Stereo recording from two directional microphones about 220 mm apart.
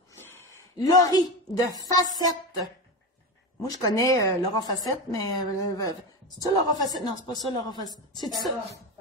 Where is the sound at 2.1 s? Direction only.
15° left (ahead or behind).